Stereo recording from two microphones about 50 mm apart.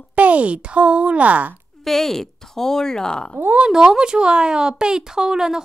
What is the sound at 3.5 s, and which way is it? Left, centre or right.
Speech, centre.